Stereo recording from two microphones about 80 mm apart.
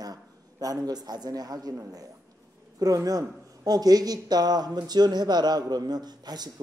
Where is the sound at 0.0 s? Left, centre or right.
Right.